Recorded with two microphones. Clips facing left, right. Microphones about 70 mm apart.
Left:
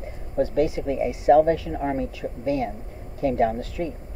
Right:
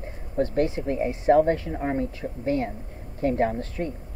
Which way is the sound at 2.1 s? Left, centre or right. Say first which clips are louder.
Left 1 dB; right.